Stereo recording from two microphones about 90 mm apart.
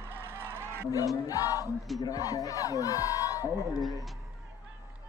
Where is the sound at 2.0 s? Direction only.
40° left (ahead or behind).